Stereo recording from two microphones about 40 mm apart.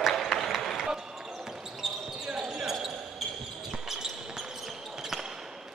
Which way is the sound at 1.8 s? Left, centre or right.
Centre.